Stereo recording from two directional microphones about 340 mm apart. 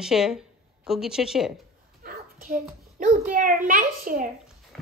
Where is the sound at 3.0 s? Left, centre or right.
Right.